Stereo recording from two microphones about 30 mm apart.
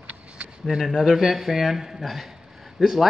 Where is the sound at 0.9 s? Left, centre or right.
Centre.